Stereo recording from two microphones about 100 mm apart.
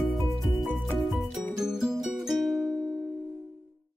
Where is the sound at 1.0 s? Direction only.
Centre (ahead or behind).